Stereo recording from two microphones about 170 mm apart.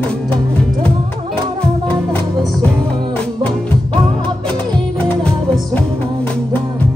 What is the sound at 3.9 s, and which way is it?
Music, 25° right (ahead or behind).